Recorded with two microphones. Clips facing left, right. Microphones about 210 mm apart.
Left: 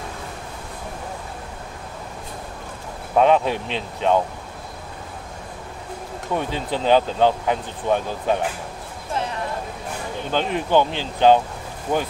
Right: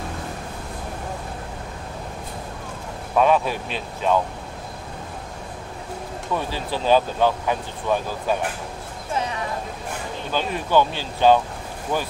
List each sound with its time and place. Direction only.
3.2 s speech: 20° left (ahead or behind)
6.3 s speech: 20° left (ahead or behind)
10.3 s speech: 20° left (ahead or behind)